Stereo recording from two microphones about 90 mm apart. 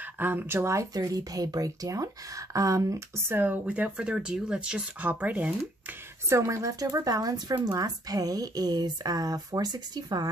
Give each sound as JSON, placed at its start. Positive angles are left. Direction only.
{"t": 0.2, "sound": "speech", "side_deg": -25}
{"t": 0.9, "sound": "a woman's voice", "side_deg": -45}
{"t": 3.3, "sound": "speech", "side_deg": -15}
{"t": 6.2, "sound": "speech", "side_deg": -35}